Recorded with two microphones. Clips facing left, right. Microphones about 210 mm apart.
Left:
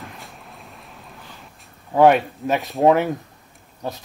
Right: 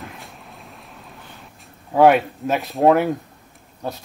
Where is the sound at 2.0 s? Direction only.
5° right (ahead or behind).